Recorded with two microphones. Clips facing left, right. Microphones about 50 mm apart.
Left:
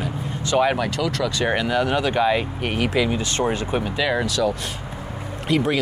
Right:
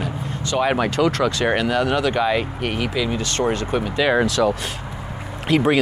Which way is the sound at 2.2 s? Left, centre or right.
Centre.